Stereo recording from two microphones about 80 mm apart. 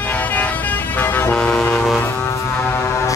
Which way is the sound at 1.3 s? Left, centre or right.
Centre.